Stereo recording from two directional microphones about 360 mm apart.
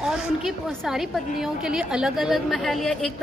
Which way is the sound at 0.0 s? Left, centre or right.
Centre.